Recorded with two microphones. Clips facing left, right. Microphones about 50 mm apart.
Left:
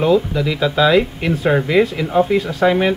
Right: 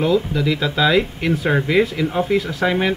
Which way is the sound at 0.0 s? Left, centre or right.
Centre.